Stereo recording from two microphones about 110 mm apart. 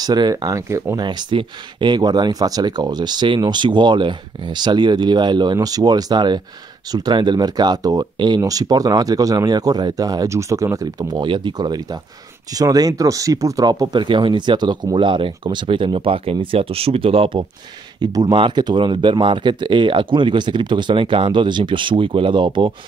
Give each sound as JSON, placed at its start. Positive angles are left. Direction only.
{"t": 0.0, "sound": "speech", "side_deg": -40}
{"t": 1.0, "sound": "speech", "side_deg": -45}
{"t": 18.0, "sound": "speech", "side_deg": -40}